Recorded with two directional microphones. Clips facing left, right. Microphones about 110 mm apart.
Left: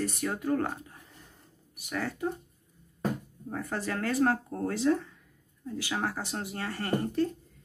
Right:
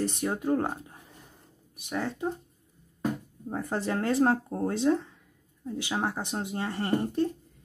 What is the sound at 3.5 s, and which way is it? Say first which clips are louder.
Speech: right 3 dB; 25° right (ahead or behind).